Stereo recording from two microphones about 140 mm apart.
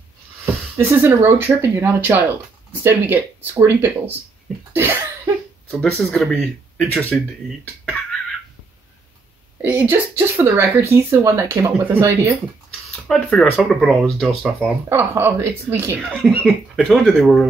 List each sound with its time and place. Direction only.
0.7 s speech: 15° right (ahead or behind)
4.7 s cough: 15° right (ahead or behind)
5.7 s speech: 10° left (ahead or behind)
9.6 s speech: 15° right (ahead or behind)
13.1 s speech: 5° left (ahead or behind)
14.6 s speech: 15° right (ahead or behind)
16.1 s speech: 5° left (ahead or behind)